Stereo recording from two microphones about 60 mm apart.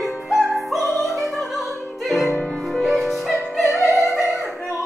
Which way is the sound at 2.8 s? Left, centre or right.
Centre.